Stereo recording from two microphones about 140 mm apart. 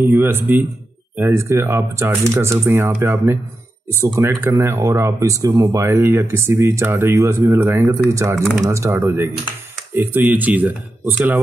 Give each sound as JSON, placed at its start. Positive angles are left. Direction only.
{"t": 0.0, "sound": "speech", "side_deg": -15}
{"t": 8.4, "sound": "speech", "side_deg": 0}
{"t": 8.6, "sound": "speech", "side_deg": -20}